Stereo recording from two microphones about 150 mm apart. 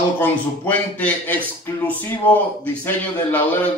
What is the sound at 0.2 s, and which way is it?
A man's voice, 10° left (ahead or behind).